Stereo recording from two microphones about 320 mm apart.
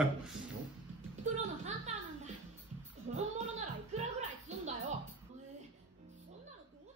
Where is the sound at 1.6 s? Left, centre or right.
Right.